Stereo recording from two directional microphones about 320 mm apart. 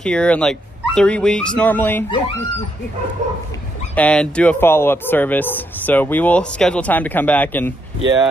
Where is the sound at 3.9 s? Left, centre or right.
Centre.